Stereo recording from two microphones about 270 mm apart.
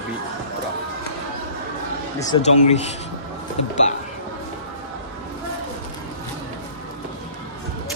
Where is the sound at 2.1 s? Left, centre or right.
Left.